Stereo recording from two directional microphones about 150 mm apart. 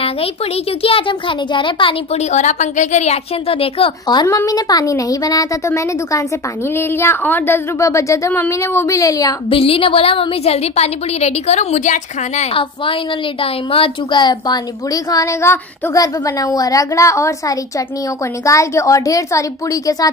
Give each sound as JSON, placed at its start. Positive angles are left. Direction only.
{"t": 0.8, "sound": "a woman's voice", "side_deg": 35}
{"t": 2.3, "sound": "a woman's voice", "side_deg": 50}
{"t": 9.5, "sound": "a woman's voice", "side_deg": 40}
{"t": 13.4, "sound": "a woman's voice", "side_deg": 35}